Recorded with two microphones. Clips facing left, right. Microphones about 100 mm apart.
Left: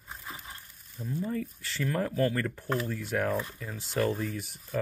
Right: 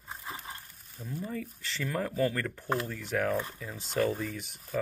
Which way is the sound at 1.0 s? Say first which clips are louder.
Left 4 dB; centre (ahead or behind).